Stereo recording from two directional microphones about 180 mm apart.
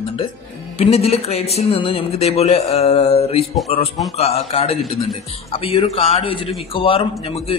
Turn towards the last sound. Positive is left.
turn(degrees=30)  # may be behind; listen again after turning